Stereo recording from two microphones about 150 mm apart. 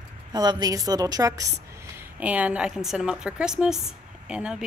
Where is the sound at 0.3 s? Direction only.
25° right (ahead or behind).